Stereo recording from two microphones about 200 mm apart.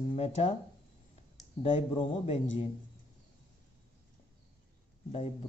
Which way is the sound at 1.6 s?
30° left (ahead or behind).